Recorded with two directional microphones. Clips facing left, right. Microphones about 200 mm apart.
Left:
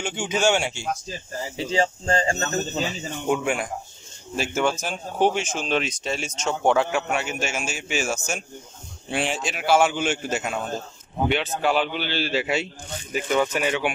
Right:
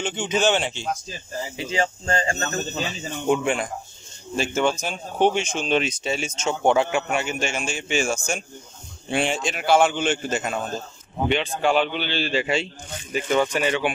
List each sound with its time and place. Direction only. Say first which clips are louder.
0.0 s a man's voice: right 1 dB; 10° left (ahead or behind)
1.6 s speech: left 3 dB; 30° left (ahead or behind)
3.3 s a man's voice: right 2 dB; 5° left (ahead or behind)